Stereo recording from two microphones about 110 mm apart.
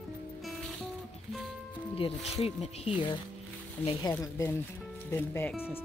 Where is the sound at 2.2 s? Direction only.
75° left (ahead or behind).